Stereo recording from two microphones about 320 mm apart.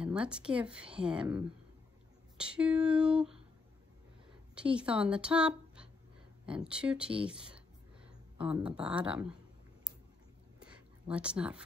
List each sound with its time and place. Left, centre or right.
0.0 s a woman's voice: centre
4.6 s a woman's voice: centre
8.4 s a woman's voice: centre
10.6 s a sound: centre